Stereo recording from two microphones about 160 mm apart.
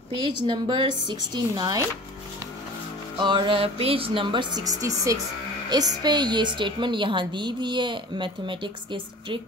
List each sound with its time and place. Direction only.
0.2 s a woman's voice: 30° right (ahead or behind)
3.2 s a woman's voice: 30° right (ahead or behind)